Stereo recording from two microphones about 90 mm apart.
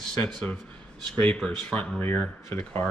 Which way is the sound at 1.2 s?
10° left (ahead or behind).